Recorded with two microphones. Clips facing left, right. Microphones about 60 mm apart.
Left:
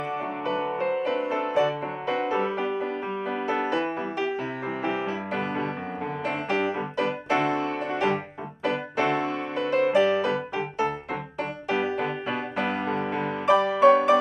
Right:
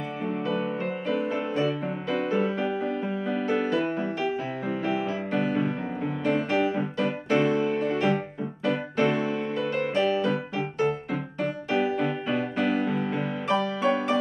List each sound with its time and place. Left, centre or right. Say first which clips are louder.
0.5 s music: left 5 dB; centre
7.4 s music: right 2 dB; left
7.7 s music: right 1 dB; centre
9.1 s music: even; left
9.6 s music: left 6 dB; centre
11.7 s music: even; centre